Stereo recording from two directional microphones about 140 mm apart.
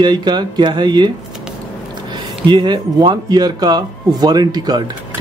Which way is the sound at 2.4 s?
35° right (ahead or behind).